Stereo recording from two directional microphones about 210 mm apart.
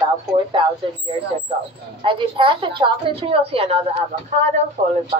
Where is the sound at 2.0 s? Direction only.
25° right (ahead or behind).